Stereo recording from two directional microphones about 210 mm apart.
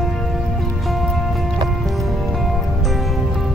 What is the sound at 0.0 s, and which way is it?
Music, centre (ahead or behind).